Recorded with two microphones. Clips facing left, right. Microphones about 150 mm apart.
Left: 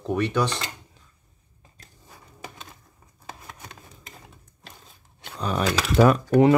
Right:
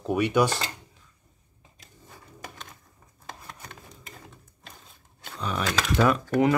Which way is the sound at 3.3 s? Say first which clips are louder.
Left 1 dB; 5° left (ahead or behind).